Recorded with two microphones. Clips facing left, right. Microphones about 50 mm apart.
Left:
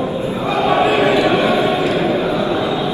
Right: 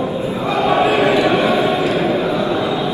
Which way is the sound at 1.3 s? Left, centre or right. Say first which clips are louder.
Even; centre.